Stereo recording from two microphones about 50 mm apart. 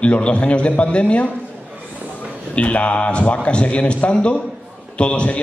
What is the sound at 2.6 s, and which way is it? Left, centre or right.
A man's voice, left.